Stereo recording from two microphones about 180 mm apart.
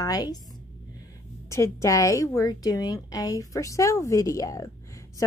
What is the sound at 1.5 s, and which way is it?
A woman's voice, 15° left (ahead or behind).